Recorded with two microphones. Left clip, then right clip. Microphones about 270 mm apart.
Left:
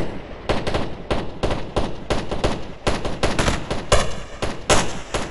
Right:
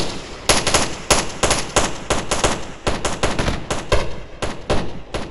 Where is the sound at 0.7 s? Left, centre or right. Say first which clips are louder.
Right 7 dB; right.